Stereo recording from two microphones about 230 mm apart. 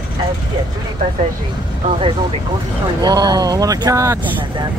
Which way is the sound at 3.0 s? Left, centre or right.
Centre.